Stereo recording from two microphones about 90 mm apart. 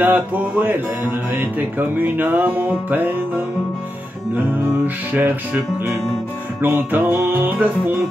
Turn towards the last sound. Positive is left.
turn(degrees=-25)  # may be behind; listen again after turning